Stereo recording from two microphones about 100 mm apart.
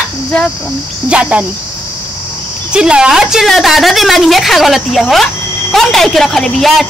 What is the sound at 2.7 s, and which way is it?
A woman's voice, 10° right (ahead or behind).